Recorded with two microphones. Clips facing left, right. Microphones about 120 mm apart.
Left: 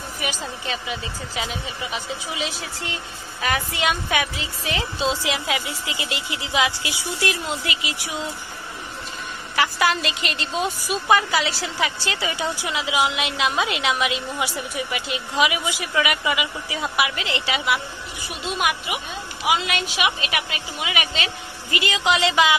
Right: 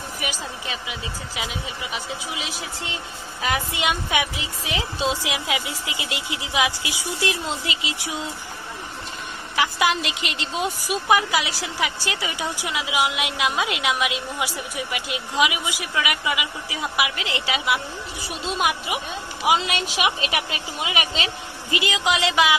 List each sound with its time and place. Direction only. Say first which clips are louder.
0.2 s a woman's voice: left 3 dB; 5° right (ahead or behind)
3.4 s a woman's voice: left 1 dB; 20° right (ahead or behind)
9.6 s a woman's voice: left 1 dB; 15° right (ahead or behind)
18.4 s a woman's voice: even; 30° right (ahead or behind)
21.6 s a woman's voice: left 1 dB; 15° right (ahead or behind)